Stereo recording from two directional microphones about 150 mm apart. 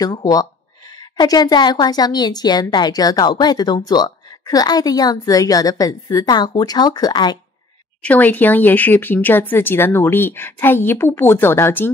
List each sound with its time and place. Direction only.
0.0 s speech: 25° left (ahead or behind)
8.0 s speech: 10° left (ahead or behind)